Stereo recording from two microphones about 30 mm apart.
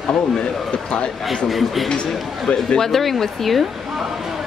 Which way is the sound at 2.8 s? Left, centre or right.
Centre.